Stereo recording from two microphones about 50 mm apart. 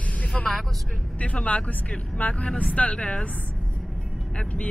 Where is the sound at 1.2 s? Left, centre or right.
Left.